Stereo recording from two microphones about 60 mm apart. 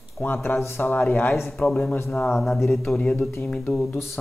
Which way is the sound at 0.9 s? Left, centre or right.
Left.